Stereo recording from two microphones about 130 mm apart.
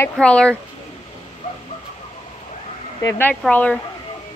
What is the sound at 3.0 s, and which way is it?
Speech, 20° left (ahead or behind).